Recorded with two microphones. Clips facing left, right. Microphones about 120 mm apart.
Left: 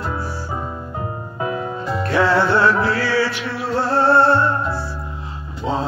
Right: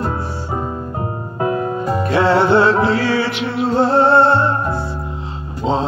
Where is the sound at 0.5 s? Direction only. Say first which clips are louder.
Right 4 dB; 35° right (ahead or behind).